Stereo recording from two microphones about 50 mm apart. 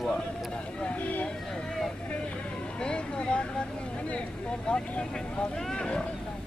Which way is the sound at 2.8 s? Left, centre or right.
Centre.